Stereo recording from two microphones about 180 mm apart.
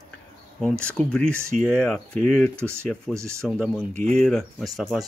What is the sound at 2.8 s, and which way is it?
Speech, 5° left (ahead or behind).